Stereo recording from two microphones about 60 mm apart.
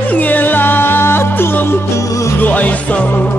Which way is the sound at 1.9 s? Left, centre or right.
Left.